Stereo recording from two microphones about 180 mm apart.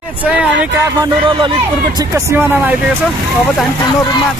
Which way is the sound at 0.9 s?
25° right (ahead or behind).